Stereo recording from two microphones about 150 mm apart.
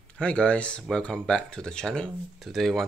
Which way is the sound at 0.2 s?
10° left (ahead or behind).